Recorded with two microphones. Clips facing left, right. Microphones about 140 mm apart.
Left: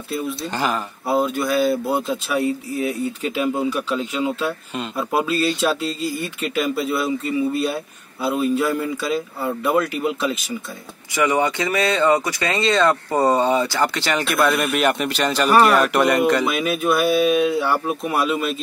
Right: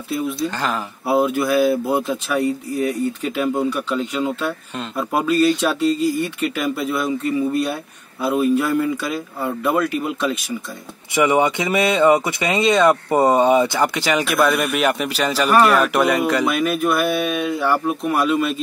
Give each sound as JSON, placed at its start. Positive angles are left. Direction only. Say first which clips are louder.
{"t": 0.1, "sound": "speech", "louder": "right 3 dB", "side_deg": 0}
{"t": 11.2, "sound": "speech", "louder": "right 2 dB", "side_deg": -20}